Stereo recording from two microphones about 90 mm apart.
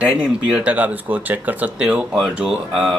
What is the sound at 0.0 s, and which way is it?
Speech, 10° right (ahead or behind).